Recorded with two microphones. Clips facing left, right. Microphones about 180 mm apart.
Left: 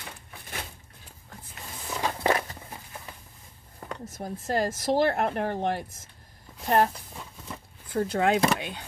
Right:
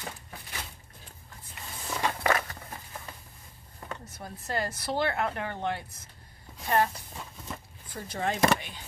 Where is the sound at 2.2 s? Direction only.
30° left (ahead or behind).